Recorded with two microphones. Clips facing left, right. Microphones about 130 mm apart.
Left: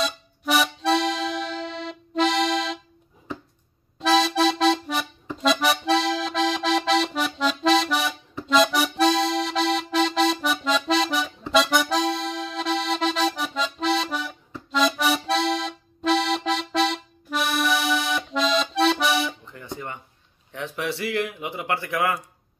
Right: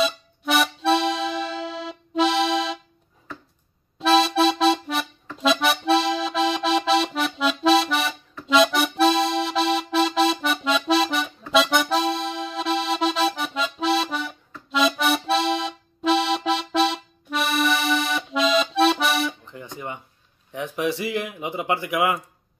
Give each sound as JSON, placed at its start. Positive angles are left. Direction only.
{"t": 0.0, "sound": "music", "side_deg": 0}
{"t": 4.0, "sound": "accordion", "side_deg": 0}
{"t": 19.4, "sound": "guitar", "side_deg": -15}
{"t": 20.5, "sound": "a sound", "side_deg": -15}